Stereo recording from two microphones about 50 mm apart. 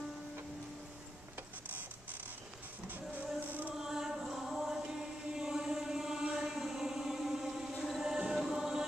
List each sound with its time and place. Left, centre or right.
2.9 s music: right
3.8 s chant: centre